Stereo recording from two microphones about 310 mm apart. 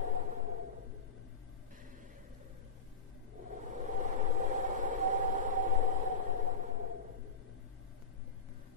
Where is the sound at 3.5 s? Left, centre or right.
Right.